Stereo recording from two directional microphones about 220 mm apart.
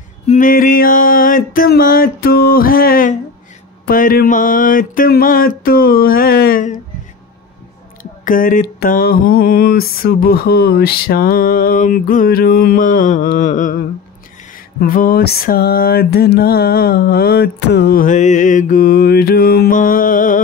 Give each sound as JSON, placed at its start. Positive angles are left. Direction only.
{"t": 0.3, "sound": "mantra", "side_deg": 40}
{"t": 8.0, "sound": "mantra", "side_deg": 40}
{"t": 14.8, "sound": "music", "side_deg": 40}